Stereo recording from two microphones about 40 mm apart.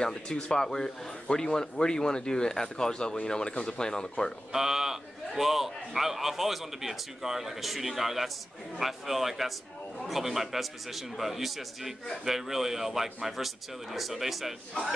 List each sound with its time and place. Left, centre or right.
0.0 s speech: left
4.5 s a man's voice: centre